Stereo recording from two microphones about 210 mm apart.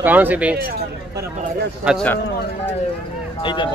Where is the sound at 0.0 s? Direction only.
10° right (ahead or behind).